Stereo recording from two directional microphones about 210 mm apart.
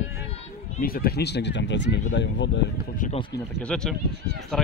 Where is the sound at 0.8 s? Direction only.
45° left (ahead or behind).